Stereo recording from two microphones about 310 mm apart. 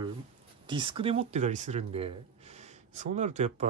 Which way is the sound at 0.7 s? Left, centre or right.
Centre.